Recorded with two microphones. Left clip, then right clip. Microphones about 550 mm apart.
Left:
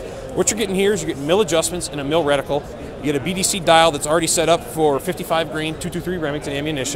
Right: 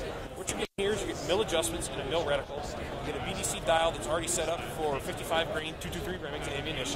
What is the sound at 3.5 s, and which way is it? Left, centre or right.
Speech, left.